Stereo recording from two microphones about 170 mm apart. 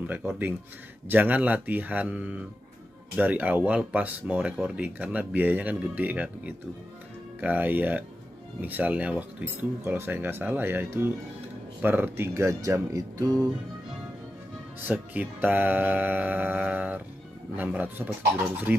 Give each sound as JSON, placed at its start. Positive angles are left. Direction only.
{"t": 0.0, "sound": "speech", "side_deg": -10}
{"t": 14.8, "sound": "speech", "side_deg": -10}